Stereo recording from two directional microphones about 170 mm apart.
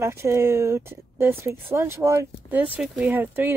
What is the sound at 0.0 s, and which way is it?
Speech, 15° right (ahead or behind).